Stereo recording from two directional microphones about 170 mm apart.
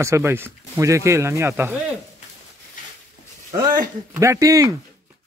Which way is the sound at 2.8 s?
50° left (ahead or behind).